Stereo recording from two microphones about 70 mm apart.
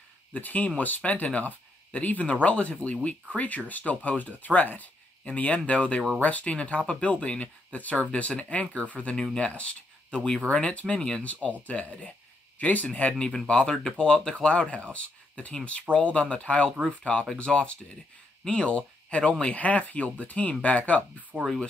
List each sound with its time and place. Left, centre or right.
0.3 s speech: left
21.3 s speech: right